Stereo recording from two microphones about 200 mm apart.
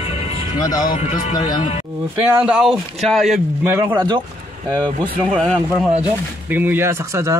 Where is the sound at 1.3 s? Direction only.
20° left (ahead or behind).